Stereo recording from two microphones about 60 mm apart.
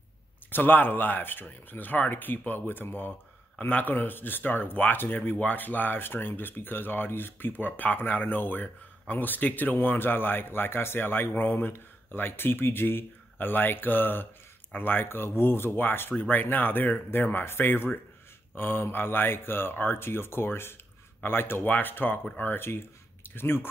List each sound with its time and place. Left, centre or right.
0.5 s speech: left